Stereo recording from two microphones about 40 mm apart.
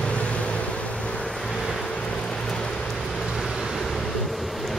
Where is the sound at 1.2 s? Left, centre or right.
Centre.